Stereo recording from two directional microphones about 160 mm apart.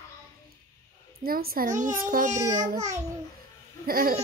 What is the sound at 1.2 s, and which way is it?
A child's voice, 70° right (ahead or behind).